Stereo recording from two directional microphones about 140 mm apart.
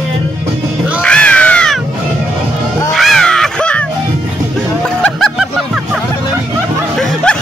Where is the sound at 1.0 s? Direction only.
10° left (ahead or behind).